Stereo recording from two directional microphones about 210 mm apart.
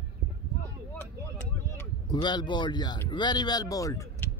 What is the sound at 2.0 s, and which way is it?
Speech, 20° left (ahead or behind).